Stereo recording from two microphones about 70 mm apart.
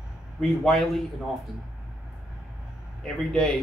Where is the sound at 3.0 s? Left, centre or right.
Centre.